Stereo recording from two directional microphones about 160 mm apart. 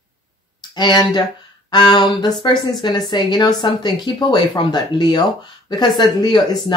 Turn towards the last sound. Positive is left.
turn(degrees=30)  # may be behind; listen again after turning